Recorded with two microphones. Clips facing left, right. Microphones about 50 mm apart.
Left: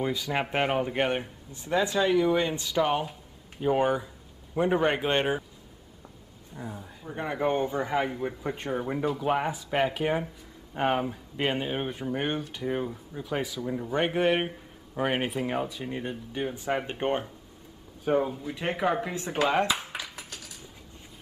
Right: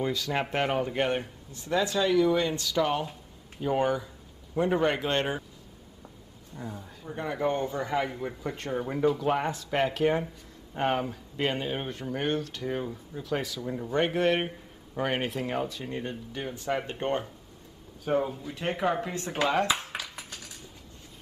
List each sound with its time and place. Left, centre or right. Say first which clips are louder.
0.0 s speech: even; centre
6.5 s speech: even; centre
19.8 s a sound: even; centre